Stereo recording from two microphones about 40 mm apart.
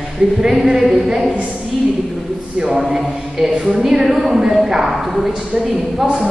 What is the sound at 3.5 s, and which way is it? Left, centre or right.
Speech, right.